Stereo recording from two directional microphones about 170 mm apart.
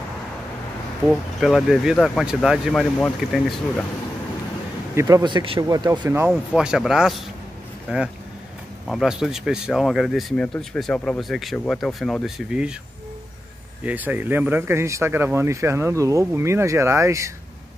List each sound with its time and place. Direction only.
1.0 s speech: centre (ahead or behind)
4.9 s speech: 20° right (ahead or behind)
6.5 s speech: 5° right (ahead or behind)
13.8 s speech: 10° right (ahead or behind)